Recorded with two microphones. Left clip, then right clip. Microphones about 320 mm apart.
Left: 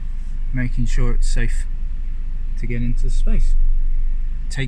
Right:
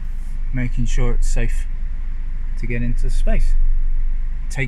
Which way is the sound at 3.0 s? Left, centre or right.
Right.